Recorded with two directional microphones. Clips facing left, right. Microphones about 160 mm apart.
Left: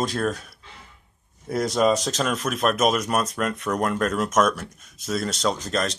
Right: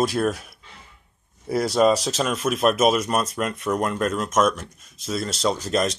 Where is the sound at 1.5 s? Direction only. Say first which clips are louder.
Right 2 dB; 5° right (ahead or behind).